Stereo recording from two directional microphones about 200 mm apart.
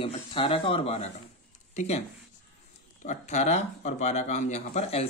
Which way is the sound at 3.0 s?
35° left (ahead or behind).